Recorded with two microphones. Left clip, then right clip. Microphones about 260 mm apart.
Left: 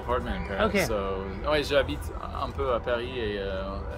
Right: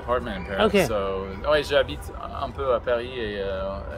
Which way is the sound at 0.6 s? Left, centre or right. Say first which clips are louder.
Right 5 dB; right.